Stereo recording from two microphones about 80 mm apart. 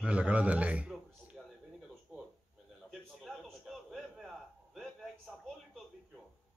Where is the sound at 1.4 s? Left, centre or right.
Centre.